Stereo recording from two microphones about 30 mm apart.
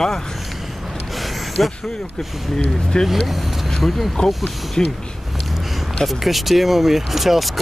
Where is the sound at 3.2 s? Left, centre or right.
Centre.